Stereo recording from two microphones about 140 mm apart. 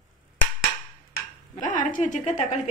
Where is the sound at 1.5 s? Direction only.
70° left (ahead or behind).